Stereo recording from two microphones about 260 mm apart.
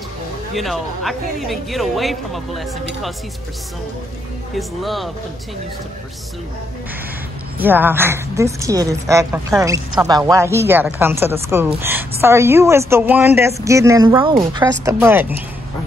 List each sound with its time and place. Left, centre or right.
0.6 s speech: centre
4.6 s speech: centre
7.5 s a woman's voice: centre